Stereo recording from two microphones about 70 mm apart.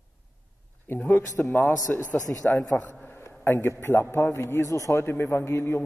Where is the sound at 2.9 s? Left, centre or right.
Left.